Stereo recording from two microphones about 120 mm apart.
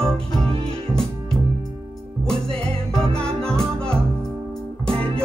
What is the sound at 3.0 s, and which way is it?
Music, 55° right (ahead or behind).